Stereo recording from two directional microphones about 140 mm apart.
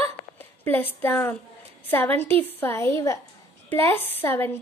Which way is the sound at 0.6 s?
15° left (ahead or behind).